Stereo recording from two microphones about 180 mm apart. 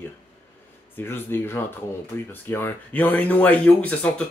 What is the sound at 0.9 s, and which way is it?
Speech, 10° left (ahead or behind).